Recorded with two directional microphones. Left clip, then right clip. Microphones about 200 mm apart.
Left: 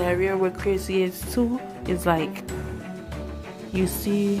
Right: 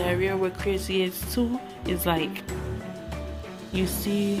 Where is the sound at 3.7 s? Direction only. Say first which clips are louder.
Left 3 dB; 15° left (ahead or behind).